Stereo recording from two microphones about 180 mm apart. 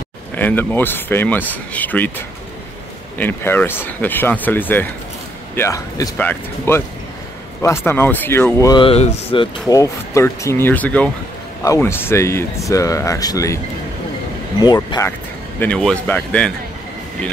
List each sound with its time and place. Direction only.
0.4 s speech: 10° left (ahead or behind)
3.2 s speech: 10° left (ahead or behind)
14.6 s speech: 25° left (ahead or behind)
15.6 s speech: 5° left (ahead or behind)